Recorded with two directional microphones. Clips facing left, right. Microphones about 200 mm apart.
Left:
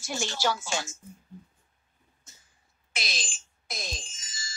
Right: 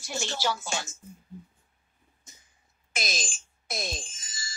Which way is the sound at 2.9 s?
45° right (ahead or behind).